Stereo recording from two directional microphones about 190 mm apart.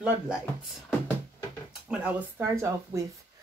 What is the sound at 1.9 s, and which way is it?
Speech, 10° right (ahead or behind).